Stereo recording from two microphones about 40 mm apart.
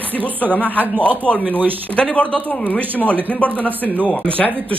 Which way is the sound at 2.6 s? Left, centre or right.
Left.